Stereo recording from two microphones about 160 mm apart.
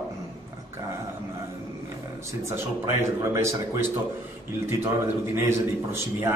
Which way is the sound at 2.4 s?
15° right (ahead or behind).